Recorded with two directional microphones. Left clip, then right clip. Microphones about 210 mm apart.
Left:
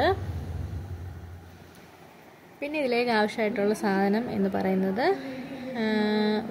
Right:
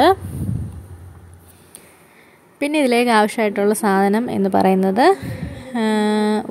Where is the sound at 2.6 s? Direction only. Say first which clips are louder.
Right 10 dB; 35° right (ahead or behind).